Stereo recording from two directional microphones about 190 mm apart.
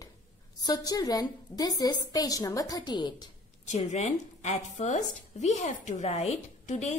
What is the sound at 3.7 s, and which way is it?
A woman's voice, 35° left (ahead or behind).